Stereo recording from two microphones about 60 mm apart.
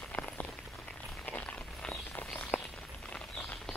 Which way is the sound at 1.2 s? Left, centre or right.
Left.